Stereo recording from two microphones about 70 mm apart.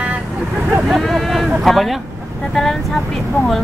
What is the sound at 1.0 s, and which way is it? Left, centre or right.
Speech, centre.